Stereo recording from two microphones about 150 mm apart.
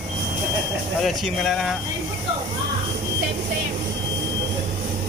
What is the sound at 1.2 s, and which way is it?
Speech, centre (ahead or behind).